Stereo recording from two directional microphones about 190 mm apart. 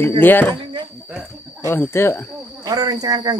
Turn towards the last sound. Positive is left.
turn(degrees=-20)  # may be behind; listen again after turning